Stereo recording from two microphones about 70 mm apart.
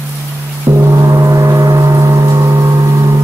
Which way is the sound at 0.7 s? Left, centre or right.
Right.